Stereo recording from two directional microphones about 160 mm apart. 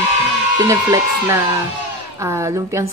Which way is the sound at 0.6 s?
20° right (ahead or behind).